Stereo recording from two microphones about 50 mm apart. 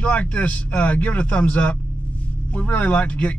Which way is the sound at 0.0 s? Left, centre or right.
Left.